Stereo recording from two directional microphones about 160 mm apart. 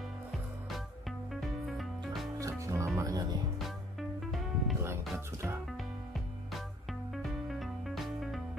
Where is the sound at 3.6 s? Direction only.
Centre (ahead or behind).